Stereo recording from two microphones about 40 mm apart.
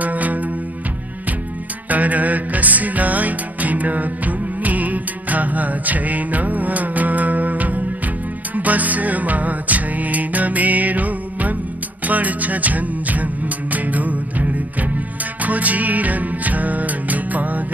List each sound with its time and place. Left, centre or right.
0.0 s music: right
1.9 s music: right